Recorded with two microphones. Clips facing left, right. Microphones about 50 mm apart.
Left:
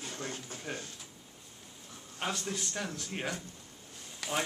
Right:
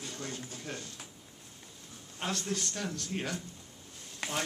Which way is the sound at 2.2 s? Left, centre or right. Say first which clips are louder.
Right 1 dB; centre.